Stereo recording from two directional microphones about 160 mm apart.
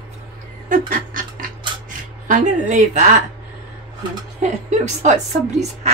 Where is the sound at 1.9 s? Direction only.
55° right (ahead or behind).